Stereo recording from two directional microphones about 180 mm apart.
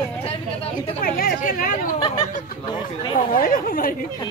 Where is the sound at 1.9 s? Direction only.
30° left (ahead or behind).